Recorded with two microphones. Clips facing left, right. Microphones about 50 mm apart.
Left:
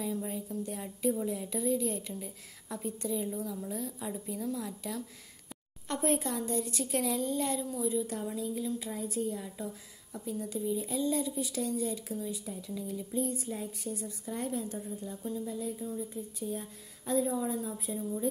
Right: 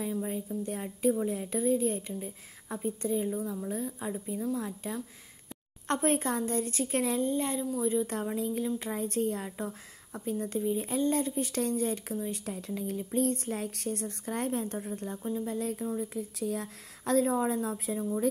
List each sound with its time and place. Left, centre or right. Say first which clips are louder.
0.5 s a woman's voice: right 2 dB; right
1.1 s a woman's voice: right 3 dB; right
3.1 s a woman's voice: right 3 dB; right
7.8 s a woman's voice: right 4 dB; right
12.4 s a woman's voice: right 3 dB; right
13.1 s a woman's voice: right 5 dB; right